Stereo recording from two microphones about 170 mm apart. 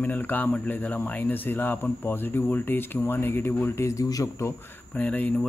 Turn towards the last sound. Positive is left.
turn(degrees=10)  # may be behind; listen again after turning